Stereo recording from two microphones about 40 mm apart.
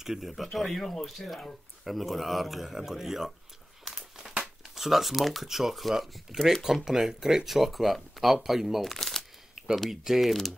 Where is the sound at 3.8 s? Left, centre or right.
Centre.